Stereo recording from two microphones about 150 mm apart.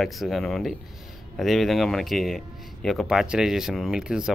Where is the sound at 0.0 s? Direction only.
Centre (ahead or behind).